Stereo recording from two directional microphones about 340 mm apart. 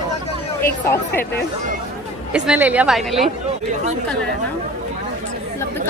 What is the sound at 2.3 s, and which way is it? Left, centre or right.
A woman's voice, centre.